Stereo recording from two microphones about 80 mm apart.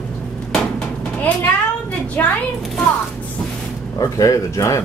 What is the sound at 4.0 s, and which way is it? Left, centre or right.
Speech, left.